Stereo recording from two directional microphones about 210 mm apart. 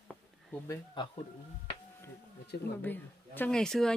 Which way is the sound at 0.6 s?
25° left (ahead or behind).